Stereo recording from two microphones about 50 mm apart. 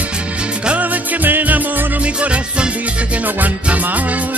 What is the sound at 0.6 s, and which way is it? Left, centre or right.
Music, right.